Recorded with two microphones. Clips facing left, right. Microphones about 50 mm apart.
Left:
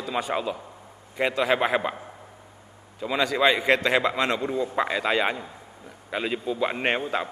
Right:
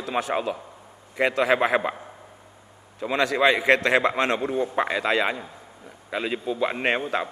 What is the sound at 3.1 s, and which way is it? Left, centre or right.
Speech, right.